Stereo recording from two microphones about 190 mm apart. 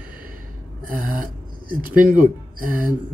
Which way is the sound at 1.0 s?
45° right (ahead or behind).